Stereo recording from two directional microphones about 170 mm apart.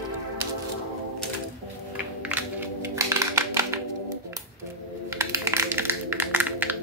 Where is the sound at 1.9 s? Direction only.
5° right (ahead or behind).